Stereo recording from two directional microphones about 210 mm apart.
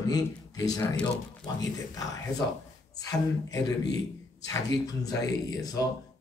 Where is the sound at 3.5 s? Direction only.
20° left (ahead or behind).